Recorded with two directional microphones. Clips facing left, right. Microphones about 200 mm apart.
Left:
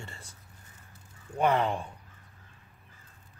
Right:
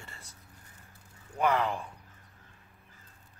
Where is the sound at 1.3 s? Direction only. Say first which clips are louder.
Left 2 dB; 25° left (ahead or behind).